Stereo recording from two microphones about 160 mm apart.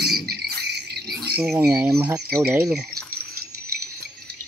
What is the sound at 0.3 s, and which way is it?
Cricket, 80° right.